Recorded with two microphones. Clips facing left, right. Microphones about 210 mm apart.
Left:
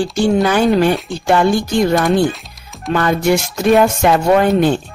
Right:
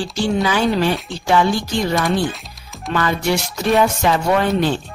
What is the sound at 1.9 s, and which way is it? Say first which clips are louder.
Speech: left 3 dB; centre (ahead or behind).